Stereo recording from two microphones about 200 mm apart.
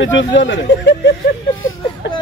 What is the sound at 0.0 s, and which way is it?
Speech, 65° left (ahead or behind).